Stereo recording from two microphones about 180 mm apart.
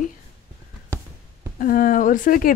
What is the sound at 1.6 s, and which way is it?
Speech, 50° left (ahead or behind).